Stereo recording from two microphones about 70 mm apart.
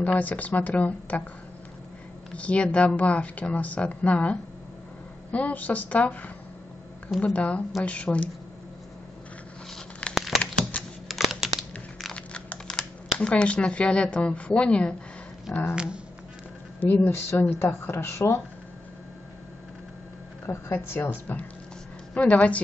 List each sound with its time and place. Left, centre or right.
0.0 s speech: left
2.3 s speech: centre
7.3 s speech: centre
10.1 s a sound: centre
10.8 s computer keyboard: centre
11.1 s a sound: centre
12.1 s speech: centre
15.7 s speech: centre
16.8 s speech: left
20.4 s speech: left